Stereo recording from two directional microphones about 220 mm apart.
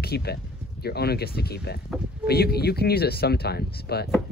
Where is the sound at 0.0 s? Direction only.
45° left (ahead or behind).